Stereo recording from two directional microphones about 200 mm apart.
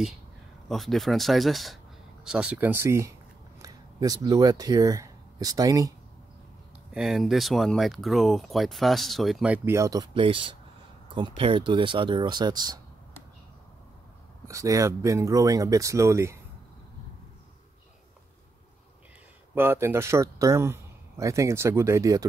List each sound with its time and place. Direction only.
0.7 s speech: centre (ahead or behind); by 5.9 s 15° right (ahead or behind)
6.9 s speech: centre (ahead or behind); by 12.8 s 20° right (ahead or behind)
14.5 s speech: 15° right (ahead or behind)
19.5 s speech: 10° right (ahead or behind)